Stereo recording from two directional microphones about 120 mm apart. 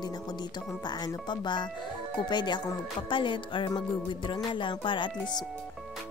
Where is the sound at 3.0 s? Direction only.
45° left (ahead or behind).